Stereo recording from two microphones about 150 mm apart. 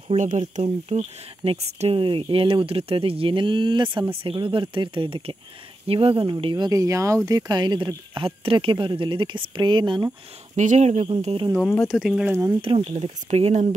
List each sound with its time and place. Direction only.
0.1 s speech: 50° right (ahead or behind); by 10.0 s 30° right (ahead or behind)
10.5 s speech: 55° right (ahead or behind)
11.9 s speech: 5° right (ahead or behind)
12.7 s speech: 40° right (ahead or behind)